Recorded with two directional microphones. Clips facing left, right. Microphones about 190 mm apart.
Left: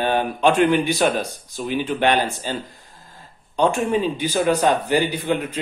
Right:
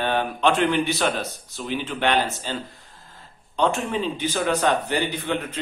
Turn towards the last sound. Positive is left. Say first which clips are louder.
# left 4 dB
turn(degrees=10)  # may be behind; listen again after turning